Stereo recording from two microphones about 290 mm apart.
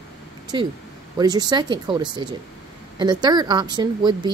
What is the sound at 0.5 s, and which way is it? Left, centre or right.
Speech, centre.